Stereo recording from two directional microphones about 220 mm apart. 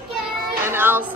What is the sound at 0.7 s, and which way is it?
Music, 10° right (ahead or behind).